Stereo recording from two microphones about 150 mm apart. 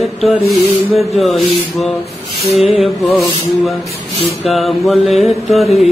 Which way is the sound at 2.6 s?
40° left (ahead or behind).